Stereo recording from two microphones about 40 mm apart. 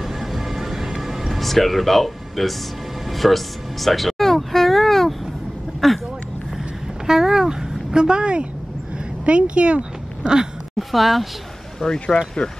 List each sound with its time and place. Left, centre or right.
0.0 s music: centre
1.3 s speech: centre
3.1 s music: centre
5.8 s a sound: centre
7.1 s a sound: centre
10.8 s speech: centre
11.8 s speech: centre